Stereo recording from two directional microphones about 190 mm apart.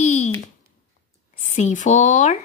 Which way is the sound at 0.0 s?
35° left (ahead or behind).